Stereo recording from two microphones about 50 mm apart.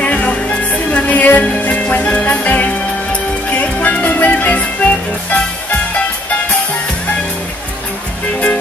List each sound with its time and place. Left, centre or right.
0.0 s music: left